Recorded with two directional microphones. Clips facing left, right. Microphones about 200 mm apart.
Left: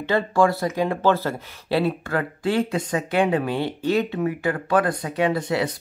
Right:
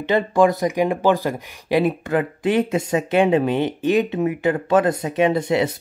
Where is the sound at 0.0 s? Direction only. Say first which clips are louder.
Right 3 dB; 20° right (ahead or behind).